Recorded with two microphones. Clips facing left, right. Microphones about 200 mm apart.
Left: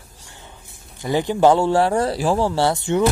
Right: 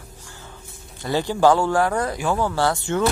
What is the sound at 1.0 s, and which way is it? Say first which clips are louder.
Speech: left 2 dB; 20° left (ahead or behind).